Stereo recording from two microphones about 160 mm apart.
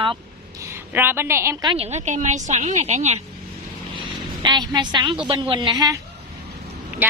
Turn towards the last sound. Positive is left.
turn(degrees=-10)  # may be behind; listen again after turning